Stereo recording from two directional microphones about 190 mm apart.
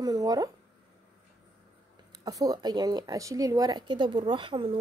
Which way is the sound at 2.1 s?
20° right (ahead or behind).